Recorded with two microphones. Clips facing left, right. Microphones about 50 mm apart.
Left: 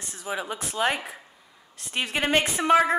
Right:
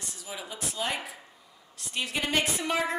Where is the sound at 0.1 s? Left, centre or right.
Left.